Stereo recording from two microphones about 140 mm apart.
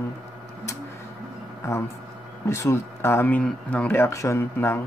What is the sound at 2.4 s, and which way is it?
Speech, 20° left (ahead or behind).